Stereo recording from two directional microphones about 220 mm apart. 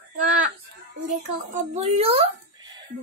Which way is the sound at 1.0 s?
35° right (ahead or behind).